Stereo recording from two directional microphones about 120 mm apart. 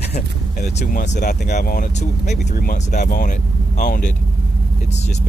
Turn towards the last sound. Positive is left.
turn(degrees=70)  # may be behind; listen again after turning